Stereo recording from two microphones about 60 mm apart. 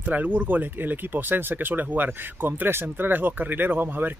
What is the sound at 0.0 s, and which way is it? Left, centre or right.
Speech, right.